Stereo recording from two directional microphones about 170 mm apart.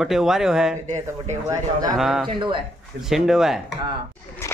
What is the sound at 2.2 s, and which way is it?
Speech, 30° right (ahead or behind).